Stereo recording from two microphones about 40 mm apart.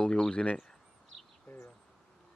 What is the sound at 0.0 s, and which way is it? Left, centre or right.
Speech, left.